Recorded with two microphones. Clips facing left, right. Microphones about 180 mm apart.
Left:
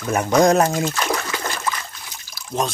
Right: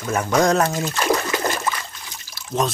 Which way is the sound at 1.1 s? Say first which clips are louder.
Right 4 dB; 20° right (ahead or behind).